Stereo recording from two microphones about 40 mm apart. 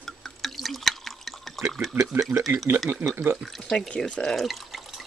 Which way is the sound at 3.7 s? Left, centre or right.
Left.